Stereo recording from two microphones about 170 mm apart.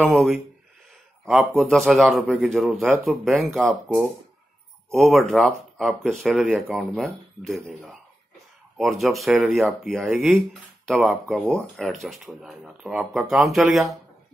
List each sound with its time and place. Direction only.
0.0 s a man's voice: centre (ahead or behind)